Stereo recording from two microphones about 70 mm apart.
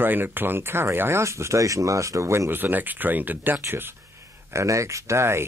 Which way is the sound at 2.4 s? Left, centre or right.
Right.